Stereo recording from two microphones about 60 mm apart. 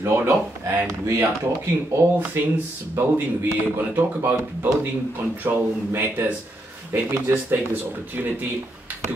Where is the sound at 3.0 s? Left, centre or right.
Right.